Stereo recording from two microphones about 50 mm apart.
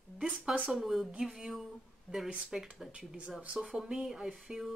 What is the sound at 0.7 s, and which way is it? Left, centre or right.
Speech, centre.